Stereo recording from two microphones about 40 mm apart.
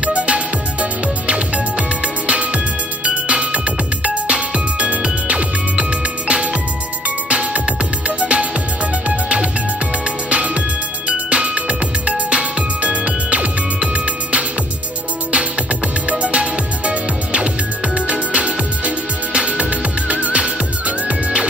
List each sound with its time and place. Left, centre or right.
0.0 s music: right
16.1 s music: right